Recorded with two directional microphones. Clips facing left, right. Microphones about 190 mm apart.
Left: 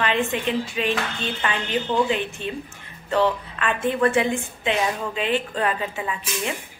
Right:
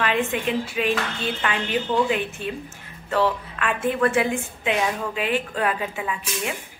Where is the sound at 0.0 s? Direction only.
5° right (ahead or behind).